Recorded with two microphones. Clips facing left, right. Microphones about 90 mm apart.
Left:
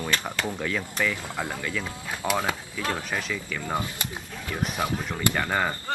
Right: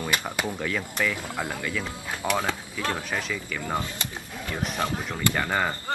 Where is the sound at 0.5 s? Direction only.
Centre (ahead or behind).